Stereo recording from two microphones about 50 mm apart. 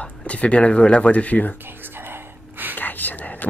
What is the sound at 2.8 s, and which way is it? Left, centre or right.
Whispering, left.